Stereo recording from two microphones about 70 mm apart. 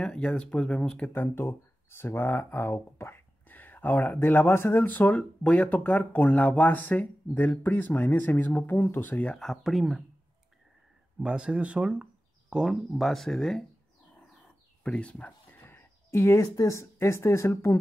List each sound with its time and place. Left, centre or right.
0.0 s speech: centre
9.4 s speech: centre
11.1 s speech: centre
12.9 s speech: centre
14.8 s speech: centre
15.5 s a sound: left
16.5 s speech: left